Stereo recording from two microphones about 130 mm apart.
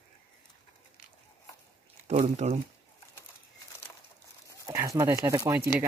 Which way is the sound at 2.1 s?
60° right (ahead or behind).